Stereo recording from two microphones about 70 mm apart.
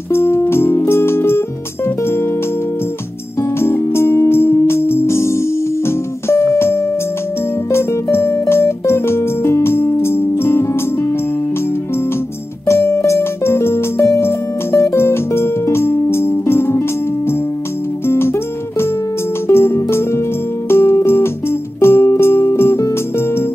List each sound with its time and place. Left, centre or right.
0.1 s music: left
3.3 s music: left
12.6 s music: left
18.0 s music: left